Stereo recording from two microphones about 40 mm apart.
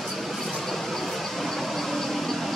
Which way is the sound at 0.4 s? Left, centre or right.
Centre.